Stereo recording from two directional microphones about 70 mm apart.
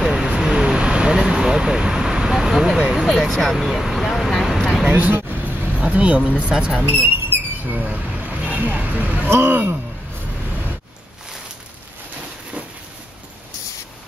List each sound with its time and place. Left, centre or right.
0.0 s vehicle: centre
2.9 s a sound: centre
4.8 s vehicle: right
9.3 s speech: right